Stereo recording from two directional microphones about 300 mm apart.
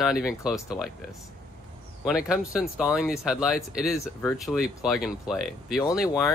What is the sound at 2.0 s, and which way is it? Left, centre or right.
Speech, centre.